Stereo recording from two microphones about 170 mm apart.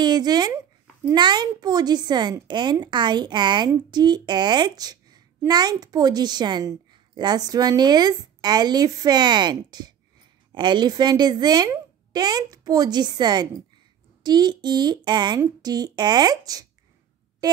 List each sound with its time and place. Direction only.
0.0 s a child's voice: 25° right (ahead or behind)
17.4 s music: 20° right (ahead or behind)